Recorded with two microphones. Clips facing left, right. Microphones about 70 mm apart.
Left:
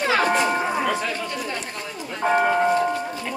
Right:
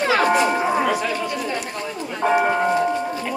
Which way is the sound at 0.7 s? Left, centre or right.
Centre.